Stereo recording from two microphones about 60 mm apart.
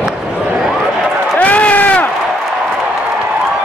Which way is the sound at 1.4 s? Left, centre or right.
Left.